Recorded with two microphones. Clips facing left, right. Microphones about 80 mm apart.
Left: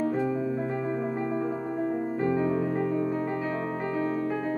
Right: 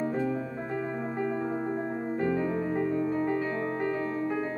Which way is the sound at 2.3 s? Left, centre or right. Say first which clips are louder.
Left 2 dB; centre.